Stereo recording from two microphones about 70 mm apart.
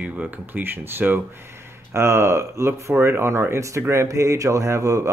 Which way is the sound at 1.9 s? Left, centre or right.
Right.